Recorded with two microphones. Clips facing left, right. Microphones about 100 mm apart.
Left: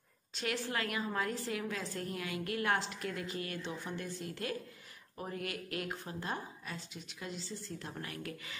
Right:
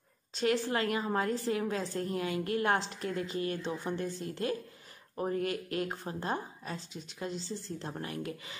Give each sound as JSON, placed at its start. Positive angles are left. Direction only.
{"t": 0.4, "sound": "a woman's voice", "side_deg": -30}